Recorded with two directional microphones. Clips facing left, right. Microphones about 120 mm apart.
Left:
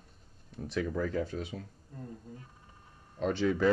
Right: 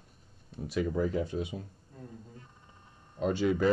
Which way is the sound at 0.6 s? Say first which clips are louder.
Right 2 dB; 15° right (ahead or behind).